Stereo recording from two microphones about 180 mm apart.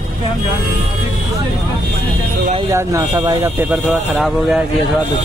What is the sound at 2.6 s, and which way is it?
Speech, 15° right (ahead or behind).